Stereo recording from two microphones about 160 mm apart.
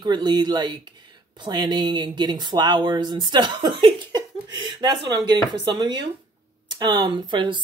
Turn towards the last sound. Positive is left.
turn(degrees=-30)  # may be behind; listen again after turning